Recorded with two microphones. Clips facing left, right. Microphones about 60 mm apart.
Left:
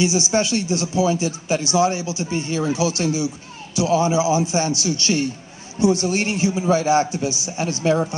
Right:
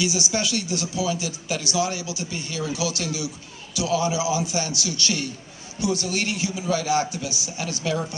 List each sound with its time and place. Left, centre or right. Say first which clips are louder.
0.0 s speech: left 6 dB; left